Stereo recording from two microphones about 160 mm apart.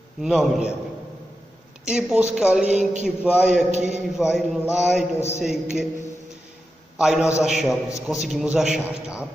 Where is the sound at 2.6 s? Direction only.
45° right (ahead or behind).